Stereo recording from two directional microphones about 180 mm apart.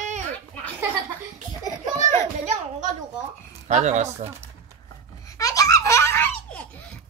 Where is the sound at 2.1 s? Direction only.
45° right (ahead or behind).